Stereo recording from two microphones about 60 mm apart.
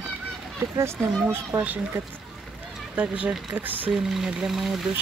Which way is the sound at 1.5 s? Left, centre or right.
Right.